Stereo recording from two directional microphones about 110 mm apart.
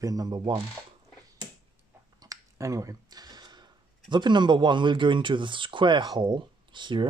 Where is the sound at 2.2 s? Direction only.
30° right (ahead or behind).